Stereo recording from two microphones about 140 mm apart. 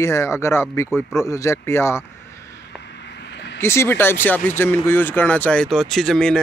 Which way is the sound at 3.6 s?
20° left (ahead or behind).